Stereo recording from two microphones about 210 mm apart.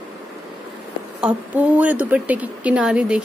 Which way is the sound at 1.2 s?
5° right (ahead or behind).